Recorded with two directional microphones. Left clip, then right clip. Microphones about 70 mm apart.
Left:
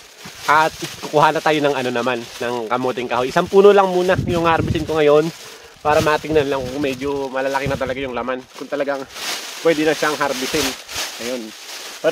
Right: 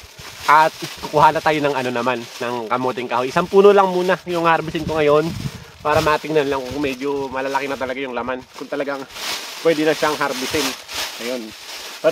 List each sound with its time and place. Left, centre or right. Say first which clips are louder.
0.5 s speech: right 2 dB; centre
1.0 s speech: right 1 dB; left
3.0 s speech: left 1 dB; left; by 6.6 s centre
6.8 s speech: left 1 dB; left